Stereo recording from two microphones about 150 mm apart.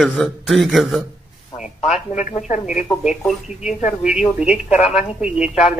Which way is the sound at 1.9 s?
50° left (ahead or behind).